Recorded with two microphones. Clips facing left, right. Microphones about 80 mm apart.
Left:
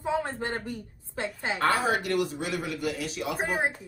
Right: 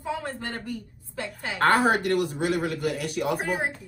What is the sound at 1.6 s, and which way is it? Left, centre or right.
A man's voice, right.